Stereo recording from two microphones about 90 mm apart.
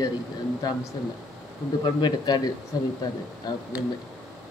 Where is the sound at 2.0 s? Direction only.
50° left (ahead or behind).